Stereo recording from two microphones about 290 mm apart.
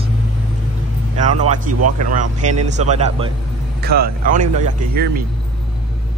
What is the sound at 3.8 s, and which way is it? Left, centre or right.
Speech, right.